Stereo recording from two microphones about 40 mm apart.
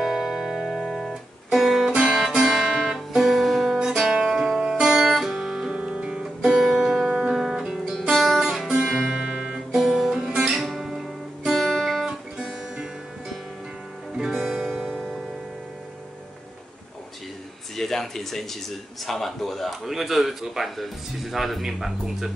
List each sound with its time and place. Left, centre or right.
0.0 s music: centre
2.0 s music: right
2.2 s music: centre
5.8 s music: right; by 8.0 s centre
8.1 s guitar: centre
9.1 s music: right
9.8 s guitar: centre
14.3 s music: centre
17.7 s a sound: centre
19.0 s speech: centre